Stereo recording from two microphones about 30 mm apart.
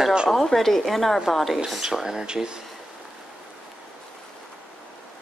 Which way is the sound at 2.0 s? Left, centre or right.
Right.